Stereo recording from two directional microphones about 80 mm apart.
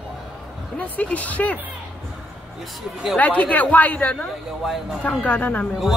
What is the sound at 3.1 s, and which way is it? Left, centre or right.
Speech, centre.